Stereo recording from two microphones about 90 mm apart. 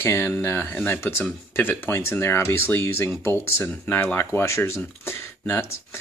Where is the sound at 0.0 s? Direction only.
25° left (ahead or behind).